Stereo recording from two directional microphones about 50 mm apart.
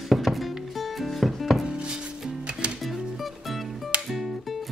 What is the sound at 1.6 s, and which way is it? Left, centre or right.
Music, centre.